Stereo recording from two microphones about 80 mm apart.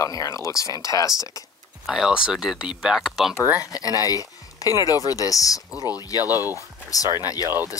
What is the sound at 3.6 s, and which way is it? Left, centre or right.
Speech, left.